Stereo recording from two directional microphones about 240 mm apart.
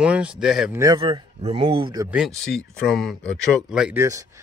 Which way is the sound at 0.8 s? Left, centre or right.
Centre.